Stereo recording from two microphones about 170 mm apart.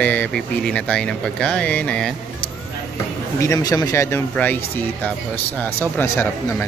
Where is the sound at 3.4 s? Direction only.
20° left (ahead or behind).